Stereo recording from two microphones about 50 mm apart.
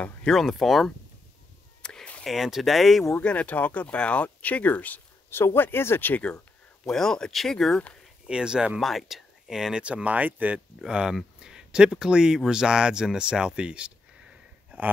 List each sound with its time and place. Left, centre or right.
0.3 s speech: centre
1.8 s a sound: centre
2.2 s speech: centre
3.2 s speech: left
5.3 s speech: left
6.9 s speech: centre
8.3 s speech: centre
8.7 s speech: centre
10.0 s speech: right
10.9 s speech: centre